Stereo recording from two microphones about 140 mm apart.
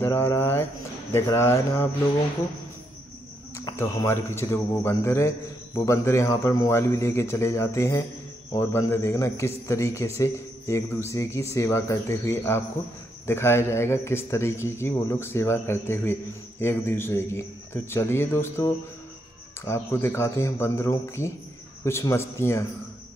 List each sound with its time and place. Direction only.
0.0 s a man's voice: 15° left (ahead or behind)
3.5 s a man's voice: 20° left (ahead or behind)